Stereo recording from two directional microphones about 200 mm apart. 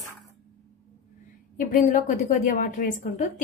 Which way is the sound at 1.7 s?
40° left (ahead or behind).